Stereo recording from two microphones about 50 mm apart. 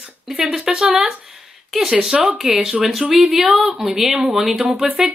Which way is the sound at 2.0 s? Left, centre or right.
Centre.